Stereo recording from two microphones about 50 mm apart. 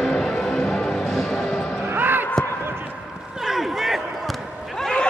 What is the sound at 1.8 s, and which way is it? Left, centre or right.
Basketball bounce, right.